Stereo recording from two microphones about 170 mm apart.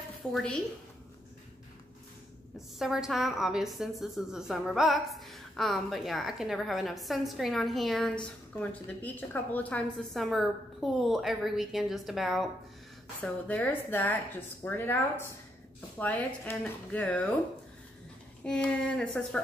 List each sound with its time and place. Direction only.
0.3 s a woman's voice: 5° left (ahead or behind)
2.5 s a woman's voice: centre (ahead or behind)
18.4 s speech: 5° left (ahead or behind)